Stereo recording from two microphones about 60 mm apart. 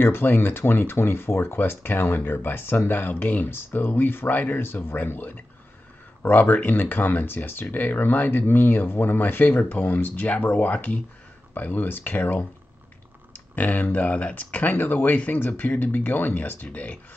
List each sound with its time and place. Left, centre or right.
0.0 s speech: left
13.6 s speech: left